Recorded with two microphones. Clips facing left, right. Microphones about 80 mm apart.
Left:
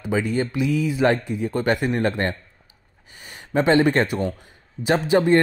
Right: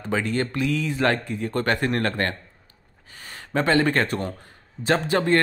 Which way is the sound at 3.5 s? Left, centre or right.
Centre.